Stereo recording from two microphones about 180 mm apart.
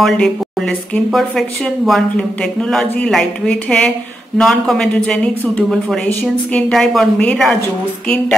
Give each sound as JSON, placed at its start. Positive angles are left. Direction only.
{"t": 0.0, "sound": "a man's voice", "side_deg": 0}